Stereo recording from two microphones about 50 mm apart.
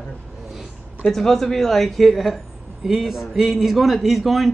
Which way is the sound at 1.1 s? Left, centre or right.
Centre.